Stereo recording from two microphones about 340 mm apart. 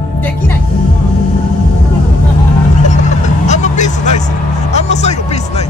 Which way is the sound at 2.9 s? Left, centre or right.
Left.